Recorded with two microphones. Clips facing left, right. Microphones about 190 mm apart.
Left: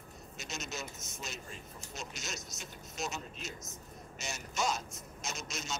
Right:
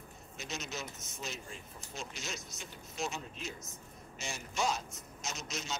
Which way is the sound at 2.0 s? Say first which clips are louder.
Right 1 dB; 45° left (ahead or behind).